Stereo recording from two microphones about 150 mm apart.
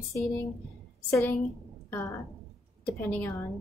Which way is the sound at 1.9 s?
15° left (ahead or behind).